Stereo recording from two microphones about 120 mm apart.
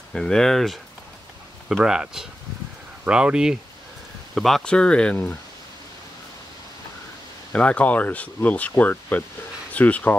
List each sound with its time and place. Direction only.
0.1 s speech: 5° left (ahead or behind)
7.5 s speech: 10° left (ahead or behind)